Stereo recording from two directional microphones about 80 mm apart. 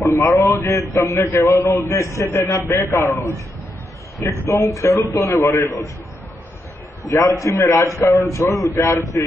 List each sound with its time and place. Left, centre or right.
0.0 s a man's voice: left
7.1 s a man's voice: left